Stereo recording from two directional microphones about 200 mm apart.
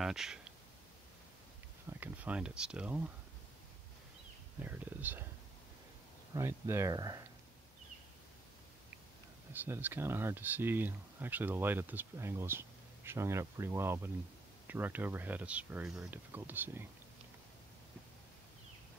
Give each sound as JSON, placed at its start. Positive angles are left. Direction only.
{"t": 0.0, "sound": "speech", "side_deg": 0}
{"t": 1.9, "sound": "speech", "side_deg": -10}
{"t": 4.6, "sound": "speech", "side_deg": -10}
{"t": 6.3, "sound": "speech", "side_deg": -15}
{"t": 9.5, "sound": "speech", "side_deg": -10}